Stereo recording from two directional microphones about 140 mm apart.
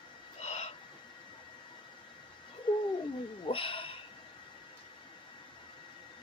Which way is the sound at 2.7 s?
35° left (ahead or behind).